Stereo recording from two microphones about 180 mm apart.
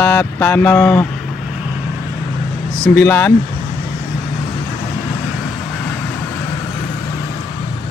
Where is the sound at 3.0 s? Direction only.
15° left (ahead or behind).